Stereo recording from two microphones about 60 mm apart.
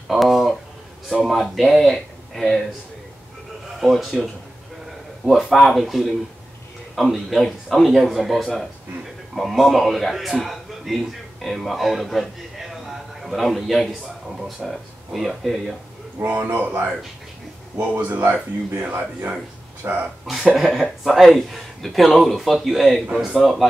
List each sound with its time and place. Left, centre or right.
0.1 s speech: centre
3.8 s a man's voice: centre
16.2 s speech: right
19.8 s speech: right
20.5 s speech: centre